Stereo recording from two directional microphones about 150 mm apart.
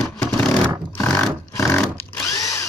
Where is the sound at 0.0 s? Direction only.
Centre (ahead or behind).